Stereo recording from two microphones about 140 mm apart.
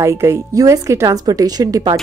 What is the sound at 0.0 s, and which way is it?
Speech, 20° right (ahead or behind).